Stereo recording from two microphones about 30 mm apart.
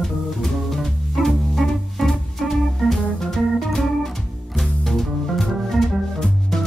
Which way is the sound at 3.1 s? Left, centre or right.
Centre.